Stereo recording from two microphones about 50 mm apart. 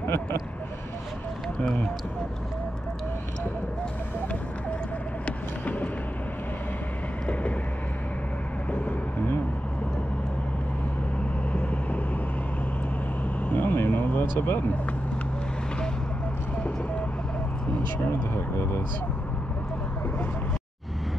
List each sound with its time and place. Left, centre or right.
0.0 s speech: left
5.2 s vehicle: left
11.5 s vehicle: left
13.5 s vehicle: left